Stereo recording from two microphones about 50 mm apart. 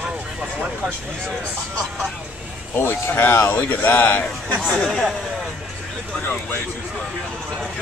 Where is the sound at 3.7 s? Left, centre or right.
Left.